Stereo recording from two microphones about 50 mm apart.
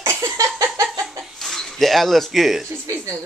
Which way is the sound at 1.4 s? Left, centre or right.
Centre.